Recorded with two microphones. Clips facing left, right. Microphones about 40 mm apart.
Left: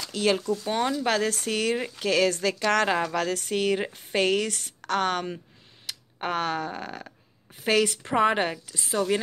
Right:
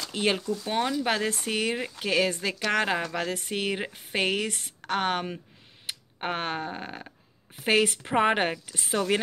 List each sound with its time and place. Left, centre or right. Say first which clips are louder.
0.1 s speech: left 2 dB; right
0.7 s a woman's voice: even; centre
3.0 s a woman's voice: left 4 dB; centre
3.3 s a woman's voice: left 4 dB; centre
5.9 s tick-tock: right 1 dB; right
6.2 s a woman's voice: left 3 dB; right
8.7 s a woman's voice: left 3 dB; right